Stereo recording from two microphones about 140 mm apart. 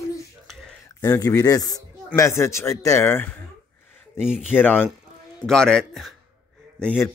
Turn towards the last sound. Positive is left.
turn(degrees=10)  # may be behind; listen again after turning